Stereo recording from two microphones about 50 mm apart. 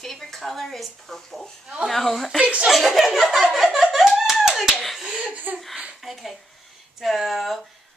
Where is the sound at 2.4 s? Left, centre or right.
Right.